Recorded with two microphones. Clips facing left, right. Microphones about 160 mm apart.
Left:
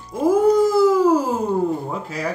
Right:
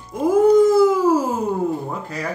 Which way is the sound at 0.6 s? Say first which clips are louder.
Right 2 dB; 20° right (ahead or behind).